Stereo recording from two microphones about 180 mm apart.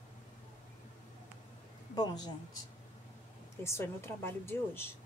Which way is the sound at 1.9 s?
20° left (ahead or behind).